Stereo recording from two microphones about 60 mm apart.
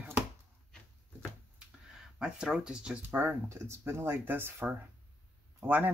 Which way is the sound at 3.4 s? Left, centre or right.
Right.